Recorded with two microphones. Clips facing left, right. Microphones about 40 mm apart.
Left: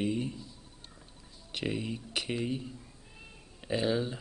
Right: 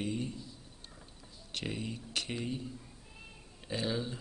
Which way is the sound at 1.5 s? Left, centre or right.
Centre.